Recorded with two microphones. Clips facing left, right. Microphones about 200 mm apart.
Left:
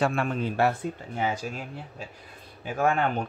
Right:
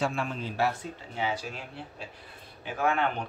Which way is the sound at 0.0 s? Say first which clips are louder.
Left 5 dB; 60° left (ahead or behind).